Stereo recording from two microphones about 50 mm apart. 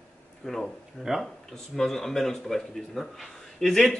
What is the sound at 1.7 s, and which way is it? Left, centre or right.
Speech, centre.